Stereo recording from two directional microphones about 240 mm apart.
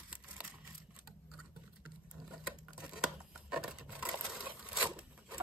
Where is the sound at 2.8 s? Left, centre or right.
Centre.